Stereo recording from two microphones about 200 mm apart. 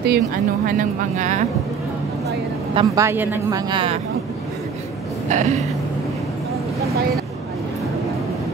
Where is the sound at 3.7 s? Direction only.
25° right (ahead or behind).